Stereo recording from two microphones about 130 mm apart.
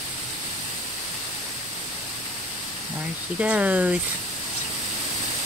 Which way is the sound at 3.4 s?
10° right (ahead or behind).